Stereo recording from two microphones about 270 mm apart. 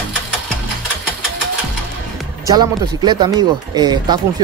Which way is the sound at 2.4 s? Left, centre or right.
Centre.